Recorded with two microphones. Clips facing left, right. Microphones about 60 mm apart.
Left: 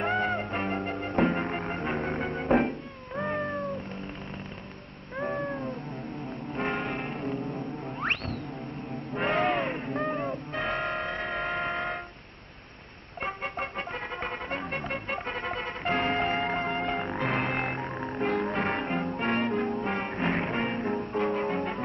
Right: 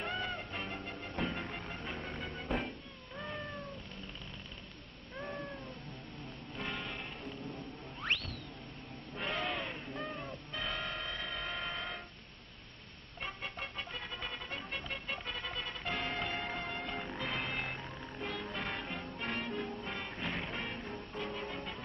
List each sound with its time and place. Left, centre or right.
0.0 s music: left
3.2 s cat: left
5.2 s cat: left
6.5 s church bell: left
8.0 s music: left
9.1 s a sound: left
13.2 s music: left